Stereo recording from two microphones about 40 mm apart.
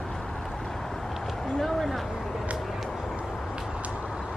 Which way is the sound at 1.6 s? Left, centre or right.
Centre.